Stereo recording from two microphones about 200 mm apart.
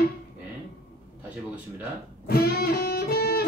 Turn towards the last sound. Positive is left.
turn(degrees=50)  # may be behind; listen again after turning